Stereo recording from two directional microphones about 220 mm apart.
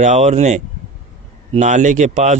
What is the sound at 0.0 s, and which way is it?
Speech, 30° right (ahead or behind).